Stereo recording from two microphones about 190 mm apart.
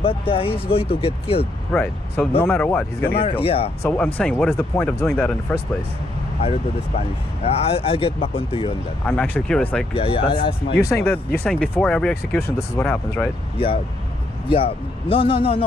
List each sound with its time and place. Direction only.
0.0 s speech: 30° left (ahead or behind)
1.7 s speech: 5° left (ahead or behind)
3.2 s speech: 30° left (ahead or behind)
3.8 s speech: 5° left (ahead or behind)
6.4 s speech: 30° left (ahead or behind)
9.0 s speech: 10° left (ahead or behind)
9.9 s speech: 30° left (ahead or behind)
11.4 s speech: 5° left (ahead or behind)
14.5 s speech: 30° left (ahead or behind)